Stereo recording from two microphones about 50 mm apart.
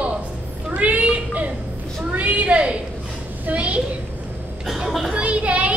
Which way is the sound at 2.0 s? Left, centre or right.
Right.